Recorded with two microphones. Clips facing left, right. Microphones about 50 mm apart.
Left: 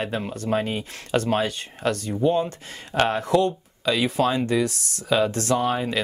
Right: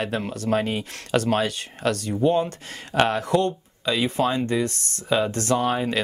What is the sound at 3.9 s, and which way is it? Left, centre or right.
Speech, centre.